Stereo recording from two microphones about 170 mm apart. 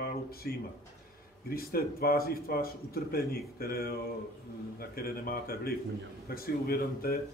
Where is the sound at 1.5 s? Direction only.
60° left (ahead or behind).